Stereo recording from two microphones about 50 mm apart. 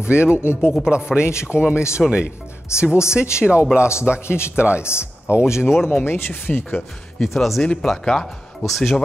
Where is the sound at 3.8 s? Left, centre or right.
Left.